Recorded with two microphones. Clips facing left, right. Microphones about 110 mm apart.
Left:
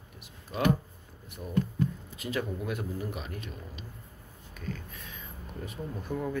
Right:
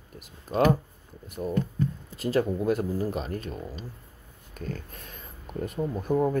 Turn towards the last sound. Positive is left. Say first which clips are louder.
# right 9 dB
turn(degrees=-45)  # may be behind; listen again after turning